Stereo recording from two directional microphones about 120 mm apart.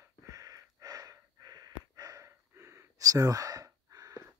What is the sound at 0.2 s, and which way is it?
Gasp, 30° right (ahead or behind).